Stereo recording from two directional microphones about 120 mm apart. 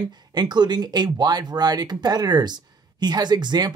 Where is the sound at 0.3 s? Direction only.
35° right (ahead or behind).